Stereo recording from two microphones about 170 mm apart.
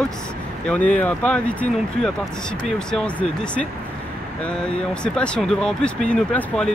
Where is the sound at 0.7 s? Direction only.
10° left (ahead or behind).